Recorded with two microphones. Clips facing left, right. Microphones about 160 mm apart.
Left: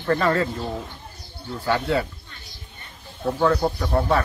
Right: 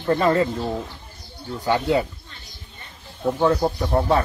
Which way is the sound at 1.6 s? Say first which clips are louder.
Right 2 dB; 20° right (ahead or behind).